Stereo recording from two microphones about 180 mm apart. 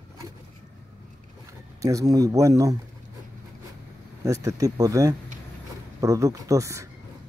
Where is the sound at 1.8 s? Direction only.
20° right (ahead or behind).